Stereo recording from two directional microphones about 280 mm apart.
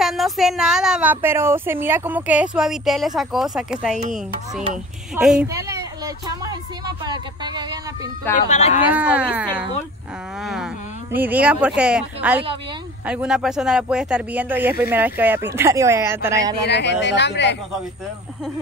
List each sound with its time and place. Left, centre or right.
0.0 s speech: centre
5.2 s speech: centre
8.5 s speech: left
8.9 s speech: centre
16.6 s speech: left